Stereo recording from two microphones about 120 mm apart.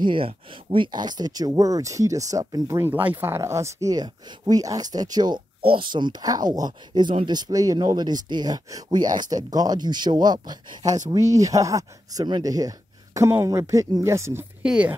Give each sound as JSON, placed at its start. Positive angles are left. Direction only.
{"t": 0.0, "sound": "speech", "side_deg": -45}
{"t": 14.6, "sound": "speech", "side_deg": -10}